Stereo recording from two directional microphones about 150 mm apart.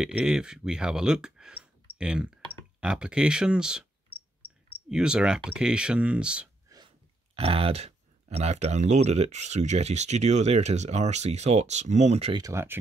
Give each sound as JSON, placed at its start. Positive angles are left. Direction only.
{"t": 0.0, "sound": "speech", "side_deg": -5}
{"t": 4.1, "sound": "cricket", "side_deg": 5}
{"t": 4.8, "sound": "speech", "side_deg": -5}
{"t": 7.3, "sound": "speech", "side_deg": -40}
{"t": 12.4, "sound": "speech", "side_deg": -20}